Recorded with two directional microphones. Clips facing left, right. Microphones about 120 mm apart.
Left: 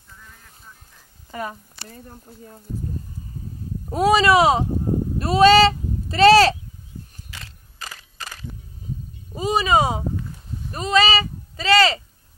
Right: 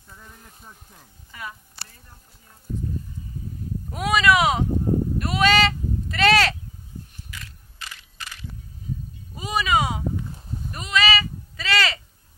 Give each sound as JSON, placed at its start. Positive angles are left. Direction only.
{"t": 1.3, "sound": "speech", "side_deg": 40}
{"t": 3.9, "sound": "speech", "side_deg": 35}
{"t": 7.2, "sound": "mechanisms", "side_deg": 30}
{"t": 9.3, "sound": "a sound", "side_deg": 30}